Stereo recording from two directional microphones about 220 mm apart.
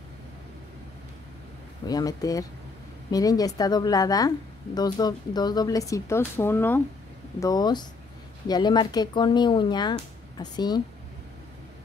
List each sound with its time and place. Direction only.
1.9 s speech: 15° left (ahead or behind)